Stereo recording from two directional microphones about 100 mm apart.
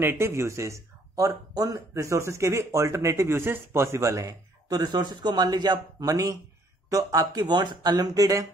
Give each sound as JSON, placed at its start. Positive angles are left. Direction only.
{"t": 0.0, "sound": "speech", "side_deg": -25}